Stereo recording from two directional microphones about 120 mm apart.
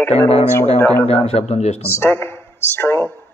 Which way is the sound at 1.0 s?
60° left (ahead or behind).